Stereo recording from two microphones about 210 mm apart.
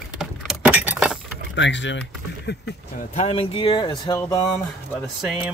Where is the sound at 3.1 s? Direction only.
25° left (ahead or behind).